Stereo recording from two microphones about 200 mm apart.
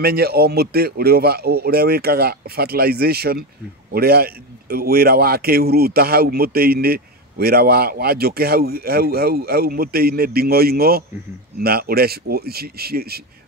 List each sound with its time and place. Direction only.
0.0 s a man's voice: 50° right (ahead or behind)